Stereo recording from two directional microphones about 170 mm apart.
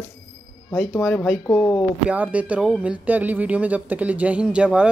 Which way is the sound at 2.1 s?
10° right (ahead or behind).